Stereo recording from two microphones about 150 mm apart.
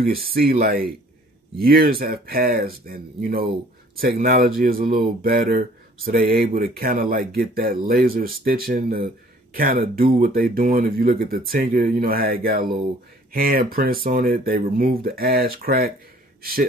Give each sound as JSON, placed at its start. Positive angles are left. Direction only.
{"t": 0.0, "sound": "speech", "side_deg": -85}